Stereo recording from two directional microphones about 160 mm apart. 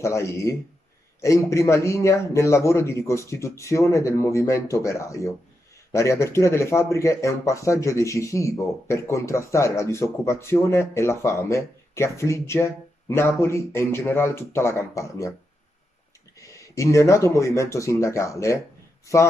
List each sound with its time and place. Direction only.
0.0 s a man's voice: 20° left (ahead or behind)
16.3 s a man's voice: 20° left (ahead or behind)